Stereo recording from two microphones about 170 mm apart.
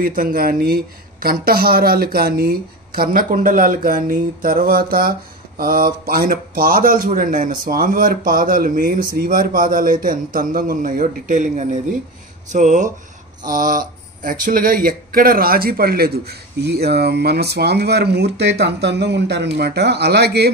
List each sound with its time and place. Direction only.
0.0 s a man's voice: 60° right (ahead or behind)